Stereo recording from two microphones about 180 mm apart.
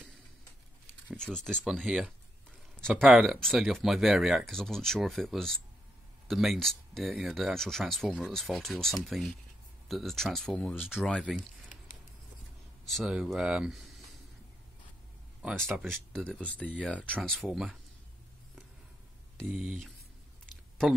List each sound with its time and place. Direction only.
1.0 s speech: 5° left (ahead or behind)
11.3 s a sound: 45° left (ahead or behind)
12.9 s speech: centre (ahead or behind)
15.4 s speech: 5° left (ahead or behind)
19.4 s speech: 5° right (ahead or behind)